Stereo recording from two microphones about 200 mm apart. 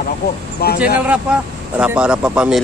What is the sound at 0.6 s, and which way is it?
Speech, 50° left (ahead or behind).